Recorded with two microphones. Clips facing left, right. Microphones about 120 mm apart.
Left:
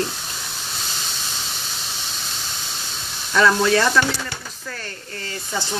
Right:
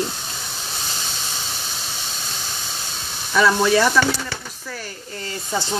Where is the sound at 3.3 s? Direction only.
10° right (ahead or behind).